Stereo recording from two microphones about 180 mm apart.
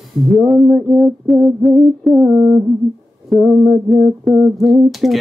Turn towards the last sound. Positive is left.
turn(degrees=0)  # may be behind; listen again after turning